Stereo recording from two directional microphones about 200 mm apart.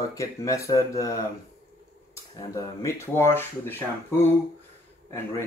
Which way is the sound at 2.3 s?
15° left (ahead or behind).